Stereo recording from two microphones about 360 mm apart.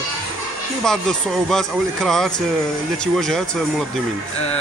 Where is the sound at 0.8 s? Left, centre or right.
Centre.